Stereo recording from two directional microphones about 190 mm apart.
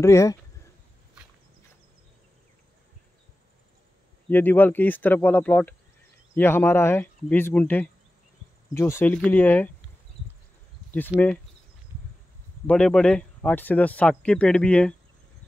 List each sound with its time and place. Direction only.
0.0 s speech: 15° left (ahead or behind)
4.3 s speech: 10° left (ahead or behind)
11.1 s speech: 10° right (ahead or behind)
12.6 s speech: 5° left (ahead or behind)